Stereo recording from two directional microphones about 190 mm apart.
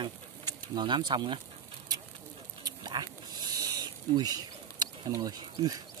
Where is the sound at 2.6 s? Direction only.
20° right (ahead or behind).